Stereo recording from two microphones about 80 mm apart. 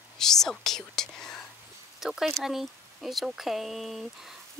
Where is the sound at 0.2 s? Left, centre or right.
Centre.